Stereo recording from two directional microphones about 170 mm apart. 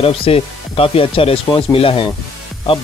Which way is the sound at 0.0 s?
35° left (ahead or behind).